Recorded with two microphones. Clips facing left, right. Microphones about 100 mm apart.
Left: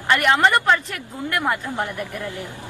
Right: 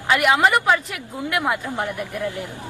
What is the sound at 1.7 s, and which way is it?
Speech, 15° right (ahead or behind).